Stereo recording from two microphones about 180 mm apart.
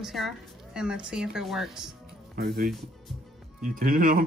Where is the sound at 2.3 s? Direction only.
60° right (ahead or behind).